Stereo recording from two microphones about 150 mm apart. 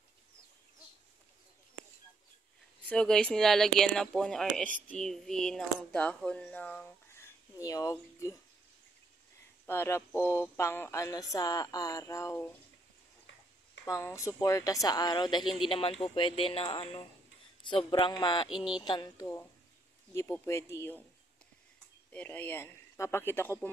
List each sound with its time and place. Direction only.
2.9 s speech: 5° left (ahead or behind)
9.7 s speech: 15° left (ahead or behind)
13.8 s a woman's voice: 20° left (ahead or behind)
18.5 s speech: 5° right (ahead or behind)
18.9 s speech: 25° left (ahead or behind)
22.1 s speech: 10° left (ahead or behind)